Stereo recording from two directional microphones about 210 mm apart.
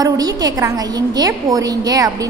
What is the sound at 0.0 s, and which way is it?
A woman's voice, 20° right (ahead or behind).